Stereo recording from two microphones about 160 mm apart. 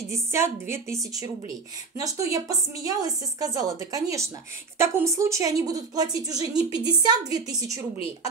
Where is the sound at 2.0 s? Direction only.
20° right (ahead or behind).